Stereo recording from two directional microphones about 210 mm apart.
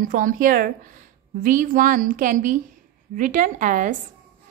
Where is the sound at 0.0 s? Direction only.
40° right (ahead or behind).